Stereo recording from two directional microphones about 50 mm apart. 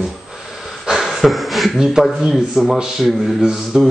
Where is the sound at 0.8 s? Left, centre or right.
Centre.